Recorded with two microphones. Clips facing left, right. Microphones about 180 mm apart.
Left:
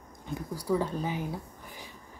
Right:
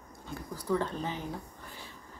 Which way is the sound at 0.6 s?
10° left (ahead or behind).